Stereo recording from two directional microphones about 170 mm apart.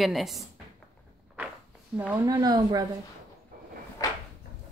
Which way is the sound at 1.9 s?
10° right (ahead or behind).